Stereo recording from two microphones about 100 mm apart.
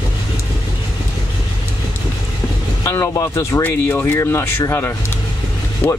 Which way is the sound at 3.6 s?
20° left (ahead or behind).